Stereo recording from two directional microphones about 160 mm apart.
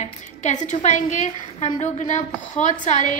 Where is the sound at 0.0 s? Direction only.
50° left (ahead or behind).